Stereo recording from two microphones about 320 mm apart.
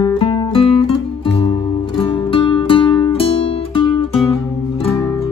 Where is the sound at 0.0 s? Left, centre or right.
Centre.